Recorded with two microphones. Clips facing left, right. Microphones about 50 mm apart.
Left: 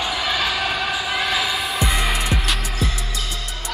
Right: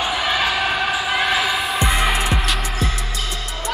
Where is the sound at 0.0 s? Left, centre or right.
Centre.